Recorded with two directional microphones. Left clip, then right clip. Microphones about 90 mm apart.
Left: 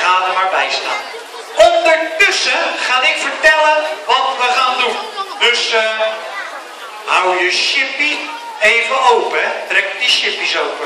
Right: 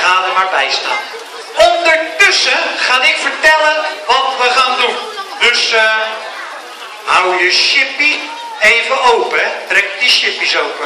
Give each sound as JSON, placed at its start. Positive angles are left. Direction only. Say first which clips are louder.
{"t": 0.0, "sound": "a sound", "louder": "right 2 dB", "side_deg": 0}
{"t": 1.6, "sound": "a man's voice", "louder": "even", "side_deg": 0}
{"t": 7.1, "sound": "a man's voice", "louder": "right 2 dB", "side_deg": 0}